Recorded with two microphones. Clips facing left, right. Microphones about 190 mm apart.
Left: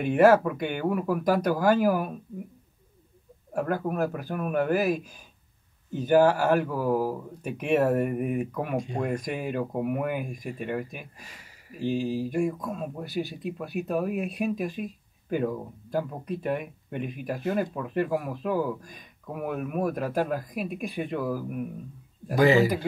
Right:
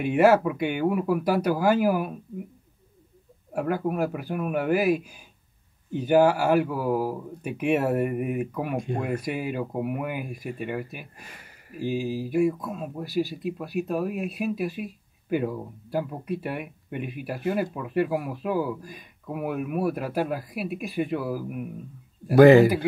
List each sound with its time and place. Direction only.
0.0 s speech: 10° right (ahead or behind)
3.5 s speech: 10° right (ahead or behind)
8.7 s a man's voice: 55° right (ahead or behind)
9.0 s speech: 5° right (ahead or behind)
11.1 s speech: 55° right (ahead or behind)
11.8 s speech: 5° right (ahead or behind)
22.3 s a man's voice: 55° right (ahead or behind)